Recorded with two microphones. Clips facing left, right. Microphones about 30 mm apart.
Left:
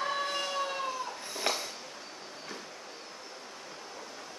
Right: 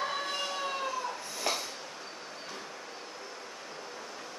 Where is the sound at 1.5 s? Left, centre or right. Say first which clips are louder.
Even; left.